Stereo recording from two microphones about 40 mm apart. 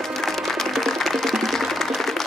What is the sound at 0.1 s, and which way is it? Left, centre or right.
Music, centre.